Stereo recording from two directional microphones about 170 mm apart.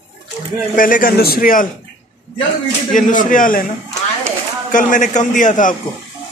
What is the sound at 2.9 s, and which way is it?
Speech, 50° left (ahead or behind).